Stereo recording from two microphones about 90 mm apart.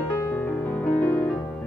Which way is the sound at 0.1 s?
20° left (ahead or behind).